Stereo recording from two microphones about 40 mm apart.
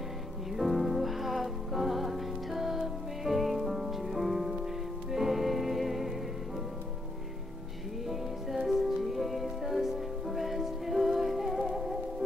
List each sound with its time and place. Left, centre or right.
0.6 s music: centre
8.6 s music: centre